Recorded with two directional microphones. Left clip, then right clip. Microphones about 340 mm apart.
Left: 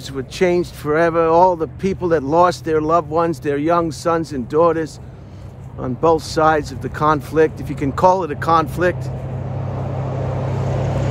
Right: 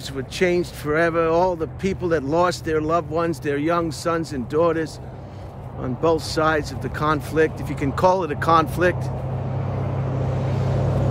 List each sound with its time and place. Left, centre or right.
0.1 s speech: centre
10.2 s vehicle: centre